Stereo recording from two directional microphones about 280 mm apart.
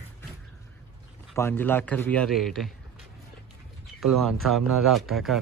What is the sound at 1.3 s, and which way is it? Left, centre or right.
Speech, centre.